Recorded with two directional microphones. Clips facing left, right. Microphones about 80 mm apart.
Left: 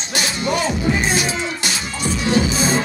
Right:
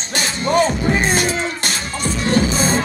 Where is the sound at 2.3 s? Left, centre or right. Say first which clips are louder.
Right 1 dB; right.